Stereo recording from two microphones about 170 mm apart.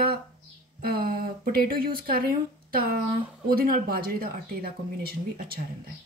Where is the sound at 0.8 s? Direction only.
60° right (ahead or behind).